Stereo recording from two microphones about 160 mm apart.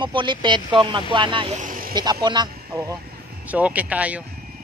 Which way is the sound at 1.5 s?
55° right (ahead or behind).